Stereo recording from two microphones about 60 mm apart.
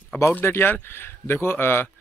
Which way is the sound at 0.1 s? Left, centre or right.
Left.